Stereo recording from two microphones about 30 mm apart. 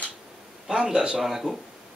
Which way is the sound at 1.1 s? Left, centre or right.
Centre.